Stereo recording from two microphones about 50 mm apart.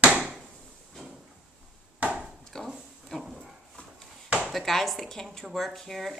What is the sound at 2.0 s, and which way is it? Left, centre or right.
Chop, right.